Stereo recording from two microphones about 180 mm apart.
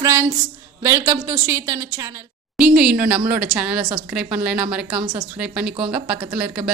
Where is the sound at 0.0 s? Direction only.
15° right (ahead or behind).